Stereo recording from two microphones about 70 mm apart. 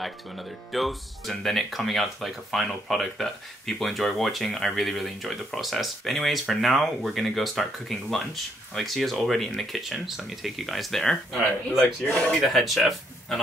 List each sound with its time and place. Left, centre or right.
0.0 s speech: centre
12.0 s speech: centre
12.4 s speech: centre